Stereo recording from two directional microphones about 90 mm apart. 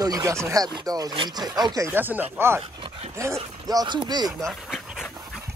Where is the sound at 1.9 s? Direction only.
20° right (ahead or behind).